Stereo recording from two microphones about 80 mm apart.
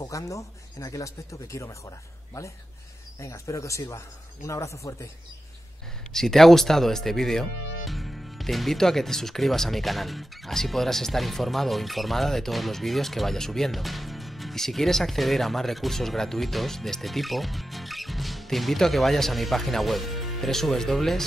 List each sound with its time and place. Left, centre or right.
0.0 s speech: left
6.1 s speech: centre